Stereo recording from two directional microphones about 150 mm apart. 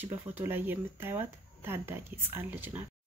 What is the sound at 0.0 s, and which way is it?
Speech, 15° right (ahead or behind).